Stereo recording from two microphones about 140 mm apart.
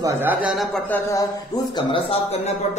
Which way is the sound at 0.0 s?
15° right (ahead or behind).